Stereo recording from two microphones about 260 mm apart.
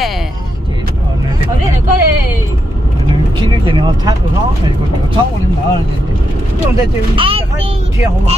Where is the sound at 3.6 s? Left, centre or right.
Centre.